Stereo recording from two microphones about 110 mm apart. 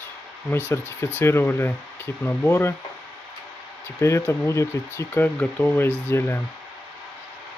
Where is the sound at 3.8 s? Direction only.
25° left (ahead or behind).